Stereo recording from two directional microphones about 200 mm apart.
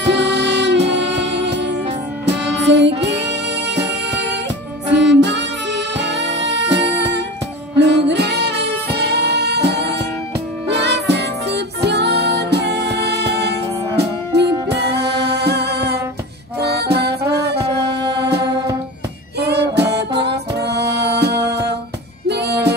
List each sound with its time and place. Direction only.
0.0 s music: 60° right (ahead or behind)
18.0 s music: 20° right (ahead or behind)
19.3 s music: 55° right (ahead or behind)